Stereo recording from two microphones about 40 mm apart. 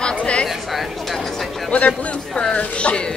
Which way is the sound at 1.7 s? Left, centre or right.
Left.